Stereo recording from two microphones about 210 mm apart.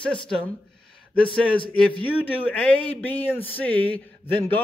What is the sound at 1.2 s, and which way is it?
Speech, 25° left (ahead or behind).